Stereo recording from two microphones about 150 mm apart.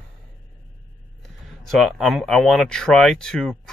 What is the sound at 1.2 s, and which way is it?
Speech, centre (ahead or behind).